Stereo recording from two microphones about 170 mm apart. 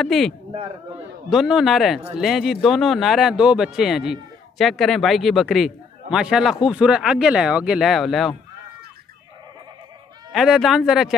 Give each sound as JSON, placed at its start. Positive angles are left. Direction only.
{"t": 0.0, "sound": "speech", "side_deg": 0}
{"t": 0.5, "sound": "a man's voice", "side_deg": -30}
{"t": 1.3, "sound": "speech", "side_deg": 0}
{"t": 10.3, "sound": "speech", "side_deg": 0}